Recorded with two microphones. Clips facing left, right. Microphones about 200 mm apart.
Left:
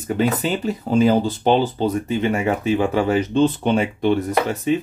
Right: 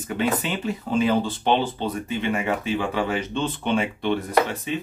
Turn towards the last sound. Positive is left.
turn(degrees=45)  # may be behind; listen again after turning